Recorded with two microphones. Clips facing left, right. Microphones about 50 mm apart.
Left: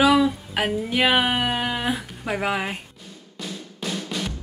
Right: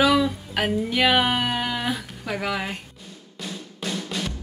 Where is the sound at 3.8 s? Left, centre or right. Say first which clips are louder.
Even; centre.